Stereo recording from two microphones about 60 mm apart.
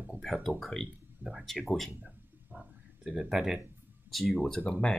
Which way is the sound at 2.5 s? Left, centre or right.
Centre.